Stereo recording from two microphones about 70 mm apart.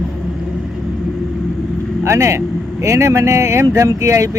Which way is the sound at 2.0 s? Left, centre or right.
Right.